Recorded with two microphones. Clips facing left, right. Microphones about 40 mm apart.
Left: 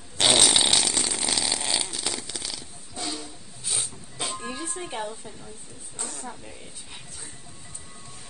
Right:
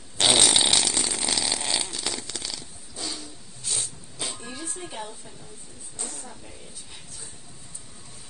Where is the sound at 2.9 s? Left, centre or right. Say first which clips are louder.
Left 2 dB; left.